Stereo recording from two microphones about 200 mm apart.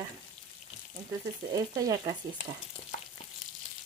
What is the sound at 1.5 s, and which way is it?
Frying, 20° right (ahead or behind).